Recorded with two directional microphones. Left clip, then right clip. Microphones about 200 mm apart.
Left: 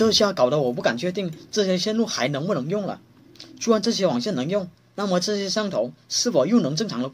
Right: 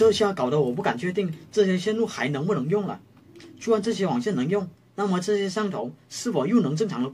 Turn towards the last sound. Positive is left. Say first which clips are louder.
# left 1 dB
turn(degrees=40)  # may be behind; listen again after turning